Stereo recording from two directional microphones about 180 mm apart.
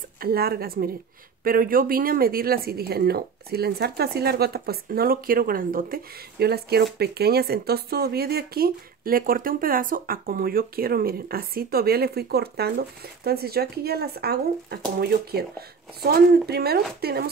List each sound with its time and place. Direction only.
0.2 s speech: 60° right (ahead or behind)